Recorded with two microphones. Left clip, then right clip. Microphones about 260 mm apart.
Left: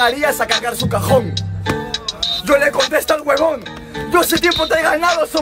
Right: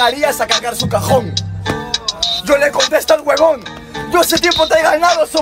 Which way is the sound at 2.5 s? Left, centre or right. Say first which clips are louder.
Right 1 dB; centre.